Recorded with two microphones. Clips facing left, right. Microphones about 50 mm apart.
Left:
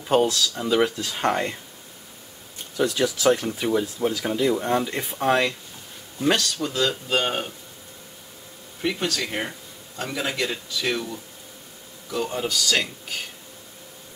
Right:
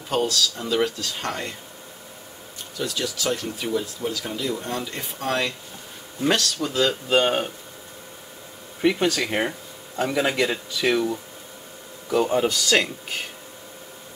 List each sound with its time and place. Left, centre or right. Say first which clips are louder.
0.1 s speech: left 3 dB; centre
2.8 s speech: left 6 dB; left
6.1 s speech: even; centre
8.8 s speech: right 5 dB; centre